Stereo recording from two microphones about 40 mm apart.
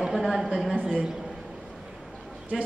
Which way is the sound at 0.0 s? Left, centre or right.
Centre.